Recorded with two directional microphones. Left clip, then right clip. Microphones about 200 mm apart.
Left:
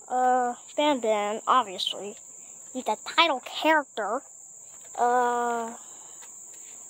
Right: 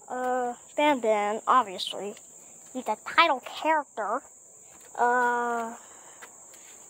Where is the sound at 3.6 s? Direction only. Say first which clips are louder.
Left 3 dB; 40° left (ahead or behind).